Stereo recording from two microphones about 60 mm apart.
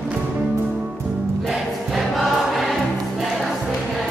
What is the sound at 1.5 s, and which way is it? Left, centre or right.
Choir, centre.